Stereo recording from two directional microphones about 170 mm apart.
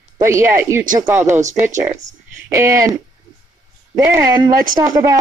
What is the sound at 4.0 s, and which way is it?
Speech, 15° right (ahead or behind).